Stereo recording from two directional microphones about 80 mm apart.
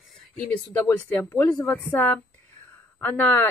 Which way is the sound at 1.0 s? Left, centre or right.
Left.